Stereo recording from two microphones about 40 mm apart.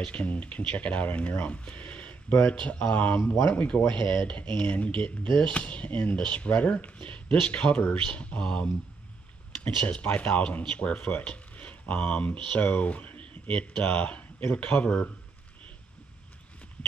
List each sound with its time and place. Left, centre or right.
0.0 s speech: left